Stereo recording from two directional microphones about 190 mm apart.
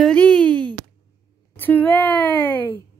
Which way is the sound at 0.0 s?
5° left (ahead or behind).